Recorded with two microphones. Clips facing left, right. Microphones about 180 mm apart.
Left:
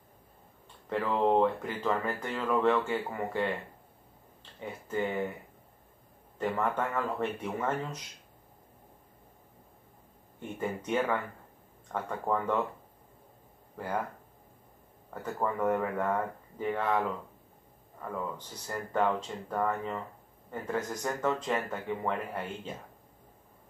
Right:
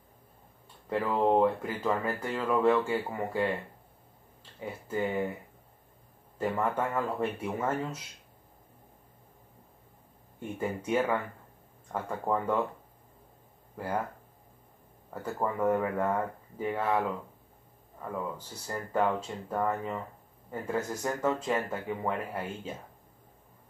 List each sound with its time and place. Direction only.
0.8 s speech: 10° right (ahead or behind)
4.6 s speech: 10° right (ahead or behind)
6.3 s speech: 10° right (ahead or behind)
10.4 s speech: 10° right (ahead or behind)
13.7 s speech: 10° right (ahead or behind)
15.2 s speech: 10° right (ahead or behind)
18.1 s speech: 10° right (ahead or behind)